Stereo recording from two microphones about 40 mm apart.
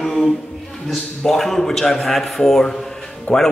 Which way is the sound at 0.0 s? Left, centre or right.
Centre.